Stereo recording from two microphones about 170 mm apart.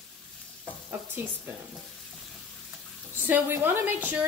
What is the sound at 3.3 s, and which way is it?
Speech, 10° right (ahead or behind).